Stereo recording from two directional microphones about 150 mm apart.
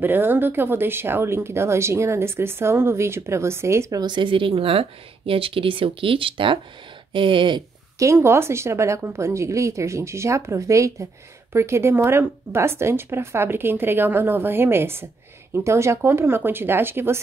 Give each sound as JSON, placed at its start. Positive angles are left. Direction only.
{"t": 0.0, "sound": "speech", "side_deg": -15}
{"t": 8.0, "sound": "a woman's voice", "side_deg": -20}